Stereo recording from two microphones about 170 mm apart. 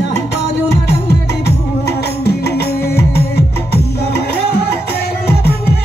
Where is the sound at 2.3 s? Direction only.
70° left (ahead or behind).